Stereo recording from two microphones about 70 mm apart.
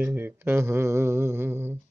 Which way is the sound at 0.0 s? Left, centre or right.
Right.